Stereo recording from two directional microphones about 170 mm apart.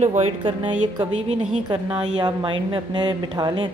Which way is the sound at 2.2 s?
30° right (ahead or behind).